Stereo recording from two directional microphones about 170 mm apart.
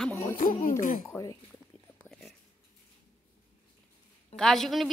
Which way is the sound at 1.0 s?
15° left (ahead or behind).